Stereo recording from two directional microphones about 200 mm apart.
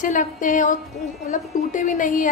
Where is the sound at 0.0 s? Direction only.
40° left (ahead or behind).